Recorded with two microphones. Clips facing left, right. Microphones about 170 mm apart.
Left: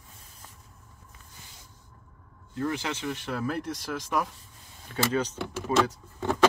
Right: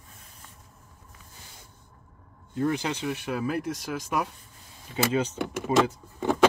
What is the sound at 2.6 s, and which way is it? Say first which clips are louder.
Speech: right 3 dB; 20° right (ahead or behind).